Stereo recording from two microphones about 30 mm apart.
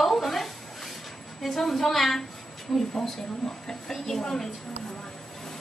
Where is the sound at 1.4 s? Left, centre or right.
Centre.